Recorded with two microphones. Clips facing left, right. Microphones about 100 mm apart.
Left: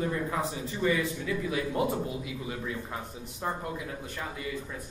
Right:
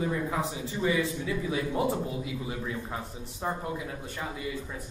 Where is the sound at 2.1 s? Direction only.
20° right (ahead or behind).